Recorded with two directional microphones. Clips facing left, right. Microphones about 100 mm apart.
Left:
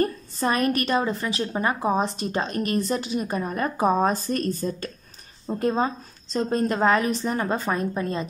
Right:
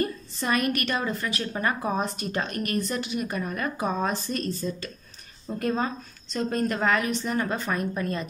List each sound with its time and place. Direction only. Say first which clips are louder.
0.0 s a woman's voice: left 4 dB; 35° left (ahead or behind)
5.5 s a woman's voice: left 4 dB; 30° left (ahead or behind)